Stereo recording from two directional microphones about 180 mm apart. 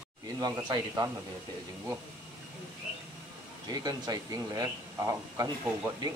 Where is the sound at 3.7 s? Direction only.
20° right (ahead or behind).